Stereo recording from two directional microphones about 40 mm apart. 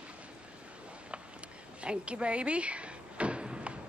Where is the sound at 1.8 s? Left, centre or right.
Right.